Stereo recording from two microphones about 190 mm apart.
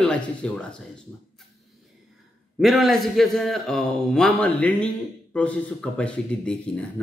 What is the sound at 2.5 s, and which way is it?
Speech, centre (ahead or behind).